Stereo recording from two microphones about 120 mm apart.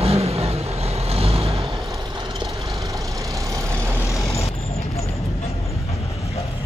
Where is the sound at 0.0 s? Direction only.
60° right (ahead or behind).